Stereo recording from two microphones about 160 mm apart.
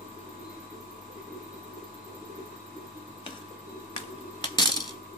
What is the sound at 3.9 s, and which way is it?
Tick-tock, 30° left (ahead or behind).